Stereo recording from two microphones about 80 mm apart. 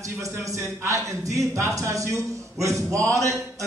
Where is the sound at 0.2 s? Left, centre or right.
Right.